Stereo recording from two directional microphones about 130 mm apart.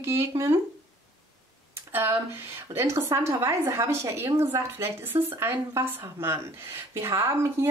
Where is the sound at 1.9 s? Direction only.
20° right (ahead or behind).